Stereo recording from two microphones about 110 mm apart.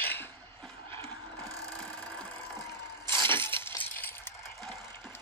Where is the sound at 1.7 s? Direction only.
10° left (ahead or behind).